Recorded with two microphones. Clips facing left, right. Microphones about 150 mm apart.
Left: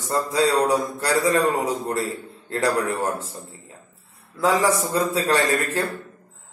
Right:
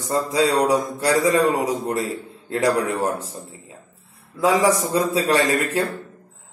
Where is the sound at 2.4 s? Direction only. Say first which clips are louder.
Right 3 dB; 15° right (ahead or behind).